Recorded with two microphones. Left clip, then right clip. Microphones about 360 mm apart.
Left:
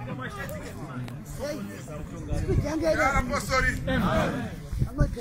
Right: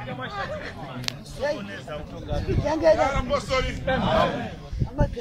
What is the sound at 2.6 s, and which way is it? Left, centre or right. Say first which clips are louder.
Speech: right 8 dB; right.